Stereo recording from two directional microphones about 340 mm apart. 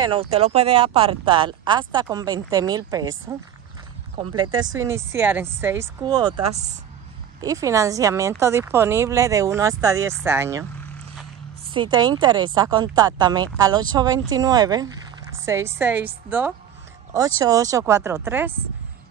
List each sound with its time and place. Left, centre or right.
0.0 s speech: centre
11.7 s a woman's voice: centre